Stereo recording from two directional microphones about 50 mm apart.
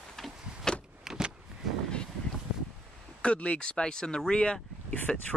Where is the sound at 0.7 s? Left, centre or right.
Centre.